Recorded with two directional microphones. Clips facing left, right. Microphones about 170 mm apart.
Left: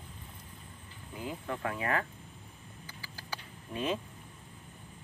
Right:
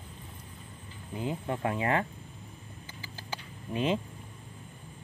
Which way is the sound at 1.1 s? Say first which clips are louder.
Right 5 dB; 25° right (ahead or behind).